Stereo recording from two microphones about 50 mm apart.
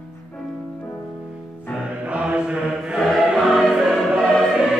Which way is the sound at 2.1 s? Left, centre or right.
Right.